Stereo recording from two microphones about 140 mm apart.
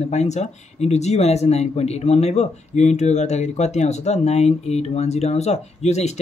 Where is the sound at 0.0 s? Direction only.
55° left (ahead or behind).